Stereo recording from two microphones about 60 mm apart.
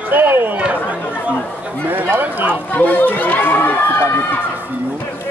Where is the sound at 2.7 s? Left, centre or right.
Left.